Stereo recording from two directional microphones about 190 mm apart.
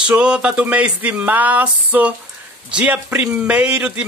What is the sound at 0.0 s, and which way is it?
Speech, 5° right (ahead or behind).